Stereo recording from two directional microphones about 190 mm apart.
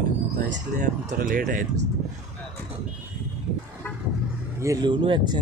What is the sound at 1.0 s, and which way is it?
Speech, 45° right (ahead or behind).